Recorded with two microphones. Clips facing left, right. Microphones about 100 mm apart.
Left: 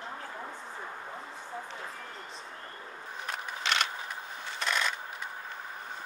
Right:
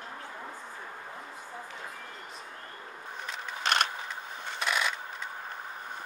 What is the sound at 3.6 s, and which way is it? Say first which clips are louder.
Vehicle: right 3 dB; 45° right (ahead or behind).